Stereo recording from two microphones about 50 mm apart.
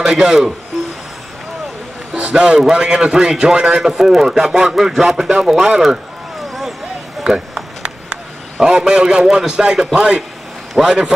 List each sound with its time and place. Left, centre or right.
0.0 s speech: centre
2.1 s a man's voice: centre
7.2 s a sound: centre
9.9 s a man's voice: centre